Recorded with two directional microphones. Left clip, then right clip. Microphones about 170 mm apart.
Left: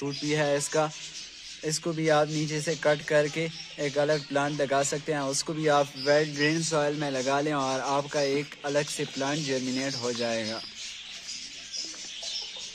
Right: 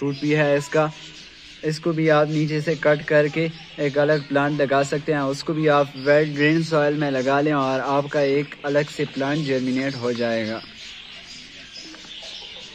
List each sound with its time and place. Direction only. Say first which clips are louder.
0.0 s speech: right 7 dB; 15° left (ahead or behind)